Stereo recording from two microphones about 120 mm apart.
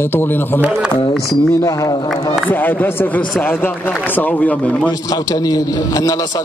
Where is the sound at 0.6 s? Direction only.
5° right (ahead or behind).